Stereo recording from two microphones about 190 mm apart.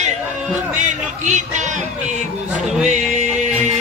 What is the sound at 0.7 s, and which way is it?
Speech, 40° right (ahead or behind).